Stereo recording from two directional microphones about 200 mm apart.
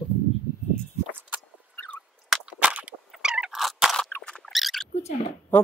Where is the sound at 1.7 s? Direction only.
5° left (ahead or behind).